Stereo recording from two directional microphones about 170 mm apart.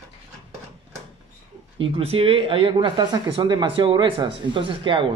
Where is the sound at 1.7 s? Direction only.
35° right (ahead or behind).